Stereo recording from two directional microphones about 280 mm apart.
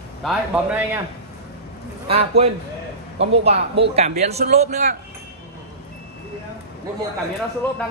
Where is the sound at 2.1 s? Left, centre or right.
Right.